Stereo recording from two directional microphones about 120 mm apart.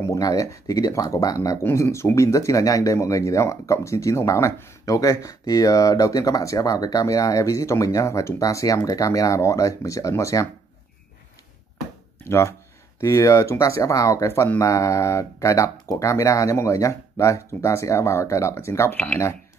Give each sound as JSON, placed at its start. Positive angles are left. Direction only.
{"t": 0.0, "sound": "speech", "side_deg": 25}
{"t": 12.3, "sound": "speech", "side_deg": 20}